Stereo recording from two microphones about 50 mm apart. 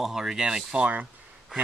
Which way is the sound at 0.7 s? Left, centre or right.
Right.